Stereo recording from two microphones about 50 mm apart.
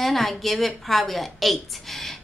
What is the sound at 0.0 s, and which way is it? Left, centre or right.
A woman's voice, centre.